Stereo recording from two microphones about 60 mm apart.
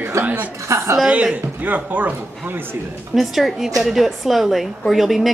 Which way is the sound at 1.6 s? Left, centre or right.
Right.